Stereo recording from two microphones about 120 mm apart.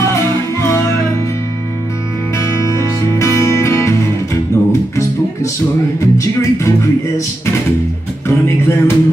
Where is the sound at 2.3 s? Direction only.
25° left (ahead or behind).